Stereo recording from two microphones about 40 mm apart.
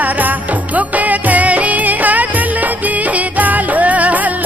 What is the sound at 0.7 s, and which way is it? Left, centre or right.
Music, right.